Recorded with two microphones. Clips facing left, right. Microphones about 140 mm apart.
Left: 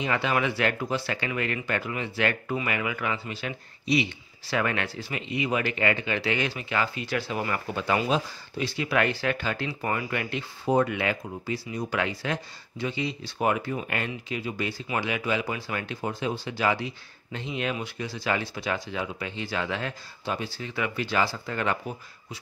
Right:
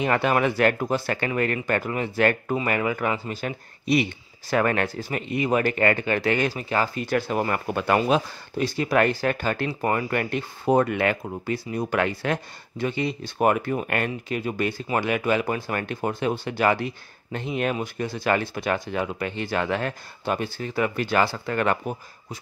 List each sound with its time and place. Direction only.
0.0 s speech: 50° right (ahead or behind)